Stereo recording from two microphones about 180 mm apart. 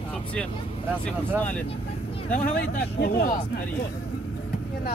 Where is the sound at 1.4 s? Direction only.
10° left (ahead or behind).